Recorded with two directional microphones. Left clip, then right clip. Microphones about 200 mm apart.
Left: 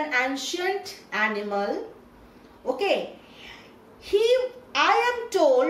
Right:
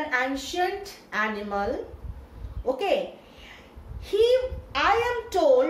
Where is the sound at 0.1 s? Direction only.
10° right (ahead or behind).